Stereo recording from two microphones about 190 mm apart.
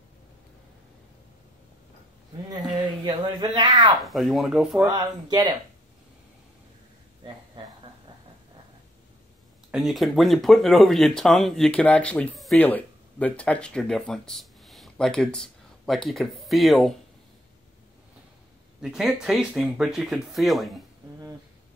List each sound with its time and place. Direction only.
2.8 s speech: 25° right (ahead or behind)
4.0 s speech: centre (ahead or behind)
4.8 s speech: 20° right (ahead or behind)
9.7 s speech: centre (ahead or behind)
18.8 s speech: 5° right (ahead or behind)